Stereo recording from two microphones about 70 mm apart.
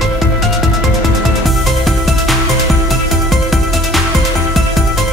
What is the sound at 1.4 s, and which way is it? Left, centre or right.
Music, centre.